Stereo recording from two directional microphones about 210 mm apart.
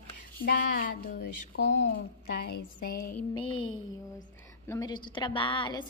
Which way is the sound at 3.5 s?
80° left.